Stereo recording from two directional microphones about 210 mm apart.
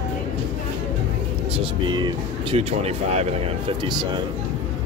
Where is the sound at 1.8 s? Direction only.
20° right (ahead or behind).